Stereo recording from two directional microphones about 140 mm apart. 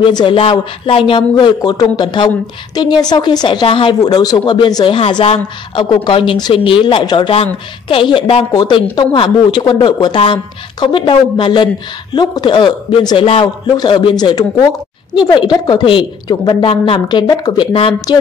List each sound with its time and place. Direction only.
0.1 s speech: 35° left (ahead or behind)